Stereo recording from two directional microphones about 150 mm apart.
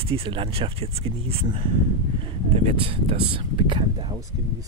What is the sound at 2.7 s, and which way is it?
Speech, 40° right (ahead or behind).